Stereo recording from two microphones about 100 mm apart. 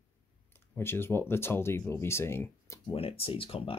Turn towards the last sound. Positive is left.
turn(degrees=65)  # may be behind; listen again after turning